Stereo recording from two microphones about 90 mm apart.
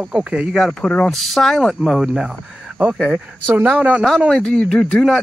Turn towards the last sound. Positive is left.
turn(degrees=0)  # may be behind; listen again after turning